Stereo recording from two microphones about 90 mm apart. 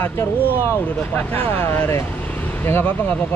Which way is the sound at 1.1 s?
20° left (ahead or behind).